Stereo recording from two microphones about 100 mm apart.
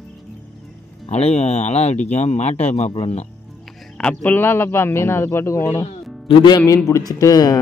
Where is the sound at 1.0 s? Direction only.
90° left.